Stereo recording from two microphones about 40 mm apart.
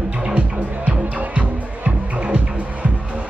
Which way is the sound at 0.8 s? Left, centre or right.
Right.